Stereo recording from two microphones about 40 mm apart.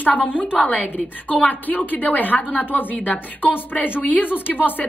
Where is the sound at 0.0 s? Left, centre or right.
Left.